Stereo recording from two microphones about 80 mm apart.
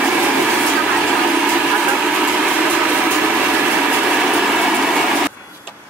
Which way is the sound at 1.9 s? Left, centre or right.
Centre.